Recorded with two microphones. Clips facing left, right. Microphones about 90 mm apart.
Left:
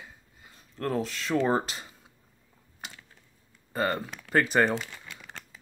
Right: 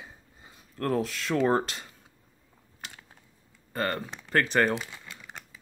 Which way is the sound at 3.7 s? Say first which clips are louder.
Left 2 dB; 10° left (ahead or behind).